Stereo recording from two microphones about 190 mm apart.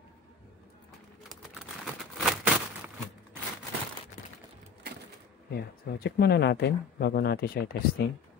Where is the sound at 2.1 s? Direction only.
Centre (ahead or behind).